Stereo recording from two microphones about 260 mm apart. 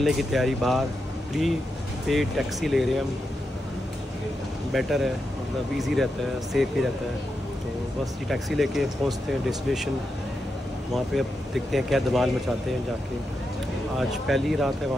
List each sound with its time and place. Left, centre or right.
0.0 s speech: centre
2.0 s speech: centre
4.7 s speech: centre
8.0 s speech: centre
11.1 s speech: centre
13.9 s speech: centre